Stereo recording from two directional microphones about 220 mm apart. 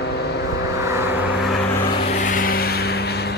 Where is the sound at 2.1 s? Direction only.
35° left (ahead or behind).